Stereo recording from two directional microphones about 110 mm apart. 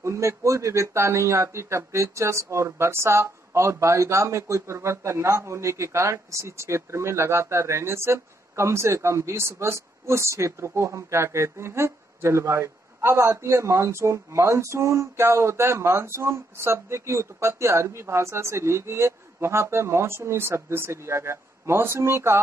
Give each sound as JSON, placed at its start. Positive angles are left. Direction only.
{"t": 0.0, "sound": "a man's voice", "side_deg": -25}